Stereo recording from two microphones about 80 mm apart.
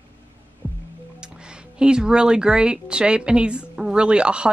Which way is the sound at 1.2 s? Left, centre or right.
Centre.